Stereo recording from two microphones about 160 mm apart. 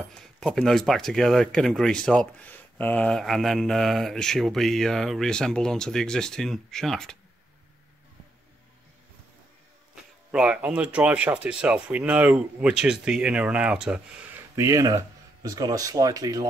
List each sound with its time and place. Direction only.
0.1 s speech: 5° left (ahead or behind)
10.3 s speech: 5° right (ahead or behind)
14.5 s speech: 20° right (ahead or behind)